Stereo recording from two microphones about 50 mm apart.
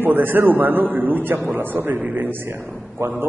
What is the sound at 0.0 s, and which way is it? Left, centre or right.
A man's voice, right.